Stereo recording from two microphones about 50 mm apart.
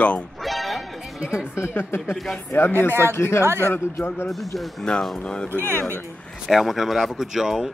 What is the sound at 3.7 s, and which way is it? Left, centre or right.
Speech, left.